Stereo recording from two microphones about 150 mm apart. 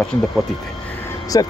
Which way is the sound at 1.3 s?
25° left (ahead or behind).